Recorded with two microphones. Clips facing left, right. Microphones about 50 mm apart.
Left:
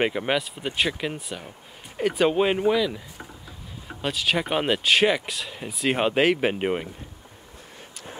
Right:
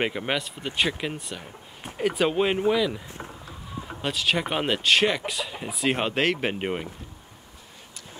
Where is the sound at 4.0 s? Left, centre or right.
Centre.